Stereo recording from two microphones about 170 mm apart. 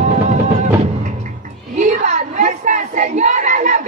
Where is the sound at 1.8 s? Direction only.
50° right (ahead or behind).